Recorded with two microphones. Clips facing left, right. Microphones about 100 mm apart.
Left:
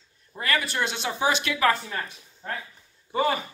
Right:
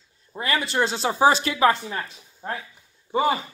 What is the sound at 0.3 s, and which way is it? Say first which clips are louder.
Speech: right 2 dB; 25° right (ahead or behind).